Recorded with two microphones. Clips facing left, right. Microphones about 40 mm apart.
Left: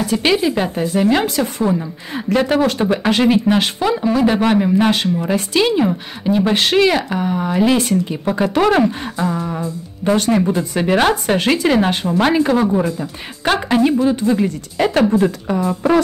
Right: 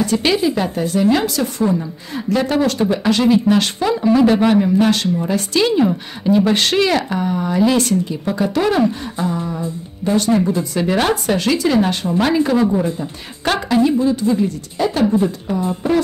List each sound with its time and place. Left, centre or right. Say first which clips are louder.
0.0 s speech: even; centre; by 3.5 s left
3.5 s speech: even; centre
4.0 s speech: right 4 dB; centre
4.5 s speech: even; centre
8.1 s a woman's voice: left 2 dB; left
8.6 s a woman's voice: left 2 dB; left
10.5 s speech: left 1 dB; left
13.7 s a woman's voice: even; left